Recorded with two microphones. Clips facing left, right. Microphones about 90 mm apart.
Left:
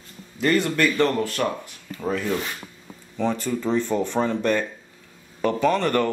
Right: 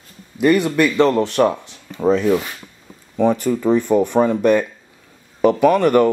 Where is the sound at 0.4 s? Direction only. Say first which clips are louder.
Right 6 dB; 15° right (ahead or behind).